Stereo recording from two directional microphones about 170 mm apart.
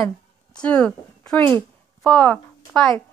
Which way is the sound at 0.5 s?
5° left (ahead or behind).